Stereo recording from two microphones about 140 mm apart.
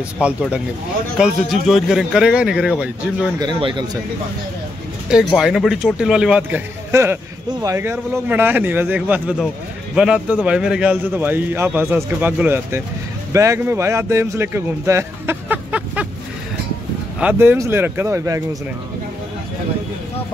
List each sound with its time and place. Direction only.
0.2 s a man's voice: 10° right (ahead or behind)
3.3 s speech: 30° right (ahead or behind)
5.1 s speech: 5° right (ahead or behind)
6.9 s a man's voice: 20° right (ahead or behind)
17.2 s a man's voice: 10° right (ahead or behind)